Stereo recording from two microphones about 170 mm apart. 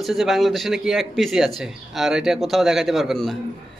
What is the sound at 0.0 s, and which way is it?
A man's voice, centre (ahead or behind).